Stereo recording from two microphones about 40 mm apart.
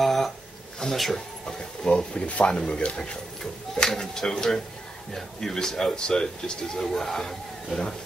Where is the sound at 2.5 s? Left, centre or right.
Left.